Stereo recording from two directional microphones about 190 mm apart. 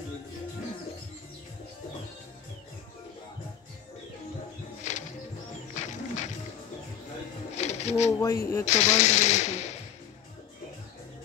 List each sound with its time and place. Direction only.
4.9 s music: 40° left (ahead or behind)
7.5 s a sound: 35° left (ahead or behind)
8.1 s speech: 15° left (ahead or behind)
8.6 s speech: 35° left (ahead or behind)